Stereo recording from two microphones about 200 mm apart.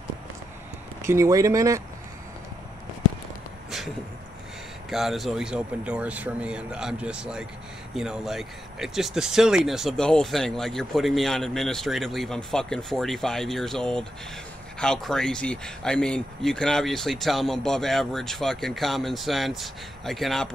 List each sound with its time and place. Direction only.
1.0 s speech: 15° right (ahead or behind)
4.8 s speech: centre (ahead or behind)